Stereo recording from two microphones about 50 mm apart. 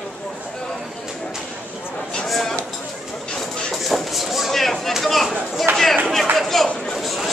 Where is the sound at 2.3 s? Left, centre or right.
Centre.